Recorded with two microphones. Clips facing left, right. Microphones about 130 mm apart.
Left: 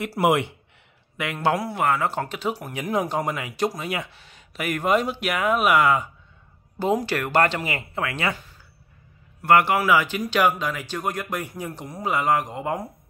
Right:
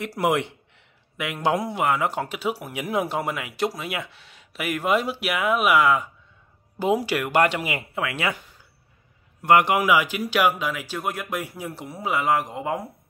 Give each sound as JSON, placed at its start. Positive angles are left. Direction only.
{"t": 0.0, "sound": "speech", "side_deg": 5}
{"t": 1.4, "sound": "speech", "side_deg": -20}
{"t": 9.4, "sound": "speech", "side_deg": -20}